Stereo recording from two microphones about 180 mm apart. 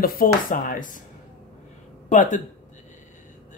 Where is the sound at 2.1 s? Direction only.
45° left (ahead or behind).